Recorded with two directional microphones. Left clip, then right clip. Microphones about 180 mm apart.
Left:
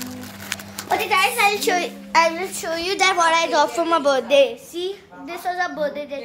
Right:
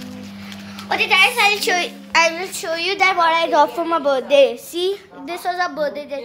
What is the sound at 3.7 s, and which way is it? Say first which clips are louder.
Speech: even; 5° right (ahead or behind).